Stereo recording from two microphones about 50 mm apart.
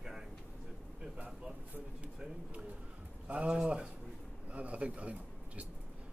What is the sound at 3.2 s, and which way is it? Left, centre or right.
Pigeon, right.